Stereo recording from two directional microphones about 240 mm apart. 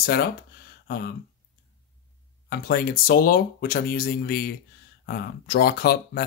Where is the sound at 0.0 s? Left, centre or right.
Left.